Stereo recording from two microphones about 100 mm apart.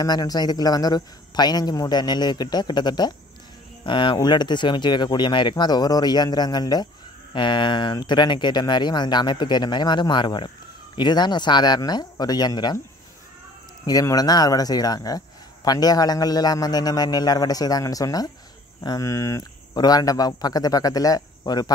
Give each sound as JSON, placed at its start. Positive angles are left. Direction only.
{"t": 0.0, "sound": "a man's voice", "side_deg": 40}
{"t": 13.8, "sound": "speech", "side_deg": 40}
{"t": 19.7, "sound": "speech", "side_deg": 40}